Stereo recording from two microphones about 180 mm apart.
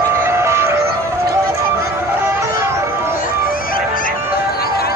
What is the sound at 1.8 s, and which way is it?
Music, 15° right (ahead or behind).